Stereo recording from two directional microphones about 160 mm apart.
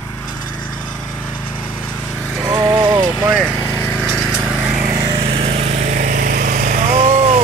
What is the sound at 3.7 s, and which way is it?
Lawn mower, 15° left (ahead or behind).